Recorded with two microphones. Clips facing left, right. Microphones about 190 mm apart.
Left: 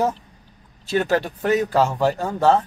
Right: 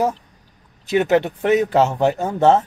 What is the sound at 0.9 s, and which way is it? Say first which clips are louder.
Speech: right 4 dB; 20° right (ahead or behind).